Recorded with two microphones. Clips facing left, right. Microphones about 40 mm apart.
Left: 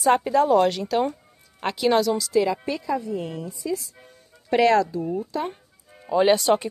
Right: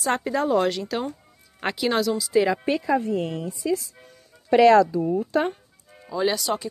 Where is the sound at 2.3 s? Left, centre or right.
Right.